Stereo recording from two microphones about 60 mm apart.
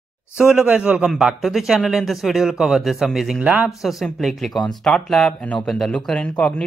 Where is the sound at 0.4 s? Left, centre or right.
Centre.